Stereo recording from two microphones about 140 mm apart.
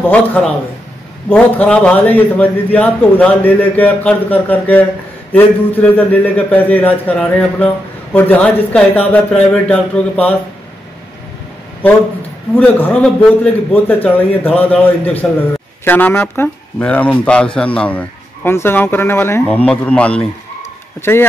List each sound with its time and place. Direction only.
0.0 s a man's voice: 10° left (ahead or behind)
12.5 s a man's voice: 10° left (ahead or behind)